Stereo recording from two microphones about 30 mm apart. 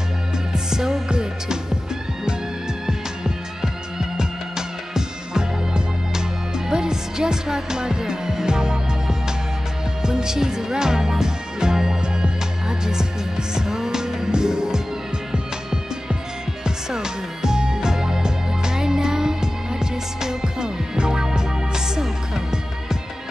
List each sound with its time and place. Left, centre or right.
0.7 s music: centre
2.9 s music: right